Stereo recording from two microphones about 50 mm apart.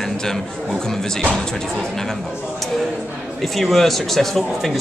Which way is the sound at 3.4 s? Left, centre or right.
Centre.